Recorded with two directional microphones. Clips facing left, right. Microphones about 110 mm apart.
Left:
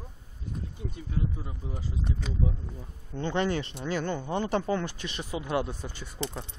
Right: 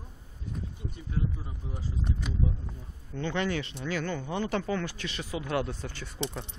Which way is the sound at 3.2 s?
30° left (ahead or behind).